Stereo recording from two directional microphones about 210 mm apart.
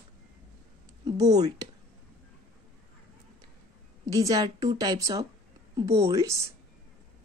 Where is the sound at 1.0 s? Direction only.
15° right (ahead or behind).